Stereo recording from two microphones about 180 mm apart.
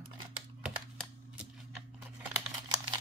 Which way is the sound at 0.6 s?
5° right (ahead or behind).